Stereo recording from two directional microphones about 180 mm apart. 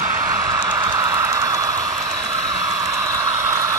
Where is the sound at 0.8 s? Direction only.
20° right (ahead or behind).